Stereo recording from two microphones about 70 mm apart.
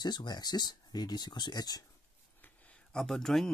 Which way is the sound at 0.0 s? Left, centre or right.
Left.